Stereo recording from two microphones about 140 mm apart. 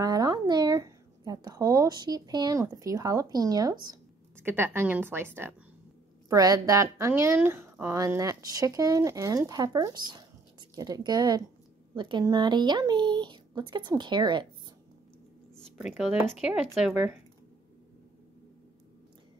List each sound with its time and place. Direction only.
0.0 s a sound: 25° right (ahead or behind)
2.6 s a woman's voice: 25° right (ahead or behind)
4.4 s a woman's voice: 15° right (ahead or behind)
6.2 s a woman's voice: 25° right (ahead or behind)
15.8 s a woman's voice: 5° right (ahead or behind)